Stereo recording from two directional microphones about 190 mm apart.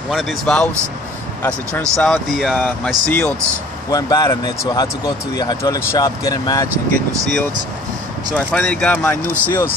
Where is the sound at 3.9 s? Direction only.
20° left (ahead or behind).